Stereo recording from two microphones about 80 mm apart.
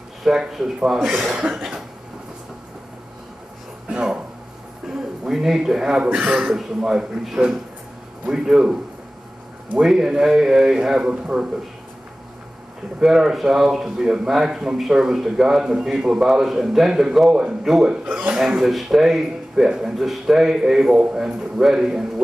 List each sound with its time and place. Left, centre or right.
0.2 s a man's voice: centre
1.5 s cough: centre
3.9 s a sound: centre
6.2 s a man's voice: centre
9.8 s a man's voice: centre
13.0 s speech: centre
18.0 s a man's voice: centre
18.3 s speech: centre